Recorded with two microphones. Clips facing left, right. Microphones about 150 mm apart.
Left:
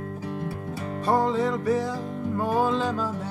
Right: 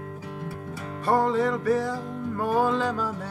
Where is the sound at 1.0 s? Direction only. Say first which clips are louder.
Right 1 dB; 20° left (ahead or behind).